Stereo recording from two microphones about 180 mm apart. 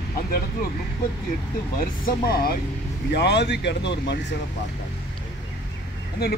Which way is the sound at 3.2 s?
70° left (ahead or behind).